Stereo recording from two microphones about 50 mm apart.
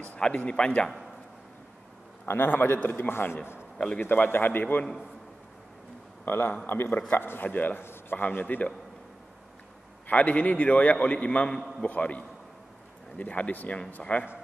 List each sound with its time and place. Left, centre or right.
0.2 s a man's voice: centre
2.2 s a man's voice: left
3.7 s a man's voice: centre
4.0 s a man's voice: left
6.2 s a man's voice: left
7.8 s a sound: left
8.2 s a man's voice: left
10.0 s a man's voice: left